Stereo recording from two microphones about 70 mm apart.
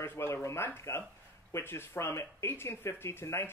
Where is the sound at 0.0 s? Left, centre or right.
Left.